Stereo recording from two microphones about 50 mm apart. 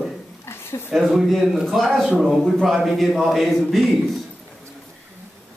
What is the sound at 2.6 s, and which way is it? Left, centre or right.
A man's voice, centre.